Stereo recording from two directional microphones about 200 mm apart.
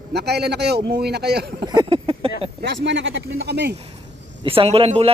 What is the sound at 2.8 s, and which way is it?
Speech, 65° right (ahead or behind).